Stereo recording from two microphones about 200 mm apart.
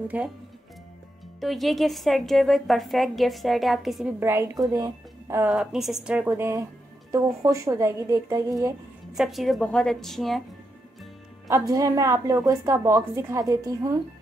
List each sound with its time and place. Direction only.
0.1 s speech: 10° right (ahead or behind)
1.4 s a woman's voice: centre (ahead or behind)
4.2 s speech: 10° right (ahead or behind)
9.1 s a woman's voice: centre (ahead or behind)
11.4 s speech: 15° right (ahead or behind)